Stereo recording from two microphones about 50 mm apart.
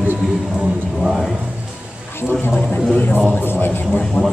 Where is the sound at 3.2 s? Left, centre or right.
Left.